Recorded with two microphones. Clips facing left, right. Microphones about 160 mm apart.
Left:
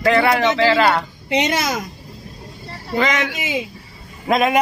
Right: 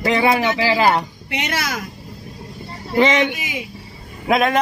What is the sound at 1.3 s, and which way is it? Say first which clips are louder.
Speech: left 7 dB; 20° left (ahead or behind).